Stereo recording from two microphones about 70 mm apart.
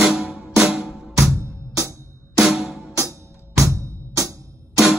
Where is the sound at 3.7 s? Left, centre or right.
Right.